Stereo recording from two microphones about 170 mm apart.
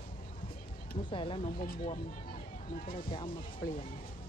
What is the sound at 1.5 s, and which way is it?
Speech, 55° left (ahead or behind).